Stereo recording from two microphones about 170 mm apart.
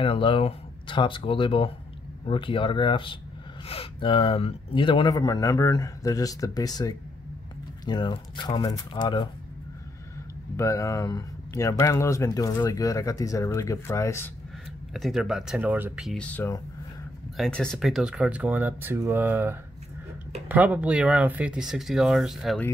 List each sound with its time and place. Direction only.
0.0 s speech: 30° left (ahead or behind)
10.5 s speech: 15° left (ahead or behind)
15.0 s speech: centre (ahead or behind)
16.1 s speech: 5° left (ahead or behind)